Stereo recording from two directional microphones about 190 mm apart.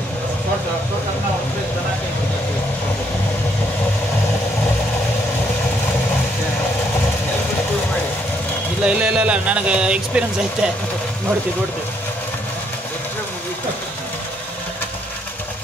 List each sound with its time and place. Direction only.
8.8 s speech: 5° right (ahead or behind)